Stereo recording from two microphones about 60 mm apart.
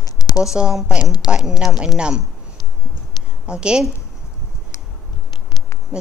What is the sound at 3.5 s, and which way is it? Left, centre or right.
Speech, centre.